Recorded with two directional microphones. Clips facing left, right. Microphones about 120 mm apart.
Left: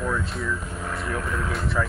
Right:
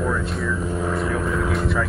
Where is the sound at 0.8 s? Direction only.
5° right (ahead or behind).